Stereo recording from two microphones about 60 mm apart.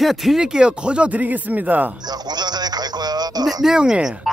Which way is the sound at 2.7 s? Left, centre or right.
Right.